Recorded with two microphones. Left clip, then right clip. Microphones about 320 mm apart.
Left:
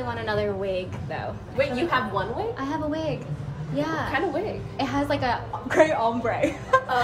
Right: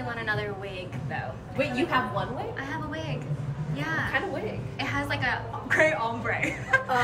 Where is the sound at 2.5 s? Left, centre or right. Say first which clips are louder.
Left 5 dB; centre.